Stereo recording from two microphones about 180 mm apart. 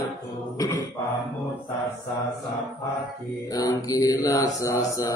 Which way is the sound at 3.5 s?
20° left (ahead or behind).